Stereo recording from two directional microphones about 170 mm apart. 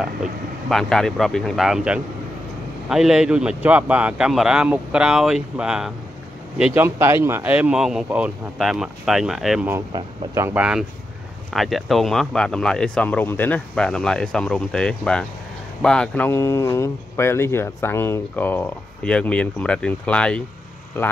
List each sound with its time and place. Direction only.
0.0 s speech: centre (ahead or behind)
9.9 s speech: 15° right (ahead or behind)
10.6 s speech: 5° right (ahead or behind); by 21.1 s 10° left (ahead or behind)